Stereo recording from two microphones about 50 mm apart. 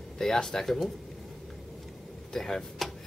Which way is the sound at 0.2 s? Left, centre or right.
Centre.